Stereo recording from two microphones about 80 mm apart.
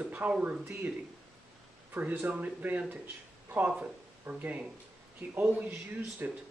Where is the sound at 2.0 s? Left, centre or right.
Right.